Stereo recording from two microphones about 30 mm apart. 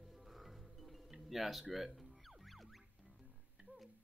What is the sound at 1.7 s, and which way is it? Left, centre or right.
Music, centre.